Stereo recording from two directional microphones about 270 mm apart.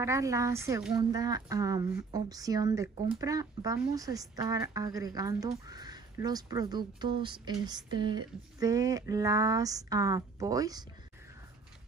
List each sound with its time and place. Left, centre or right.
0.0 s speech: centre